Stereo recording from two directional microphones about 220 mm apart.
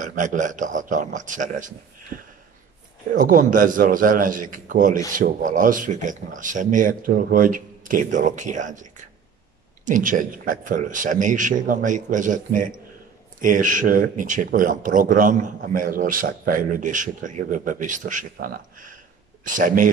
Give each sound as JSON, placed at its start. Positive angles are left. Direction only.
{"t": 0.0, "sound": "speech", "side_deg": -35}
{"t": 3.2, "sound": "speech", "side_deg": -35}